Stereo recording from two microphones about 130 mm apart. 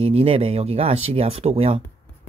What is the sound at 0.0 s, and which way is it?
Speech, 50° right (ahead or behind).